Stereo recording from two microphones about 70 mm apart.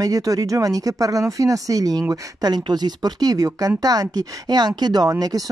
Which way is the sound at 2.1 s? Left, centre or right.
Right.